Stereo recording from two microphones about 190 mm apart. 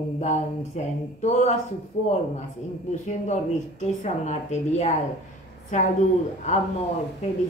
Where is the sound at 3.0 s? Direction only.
35° left (ahead or behind).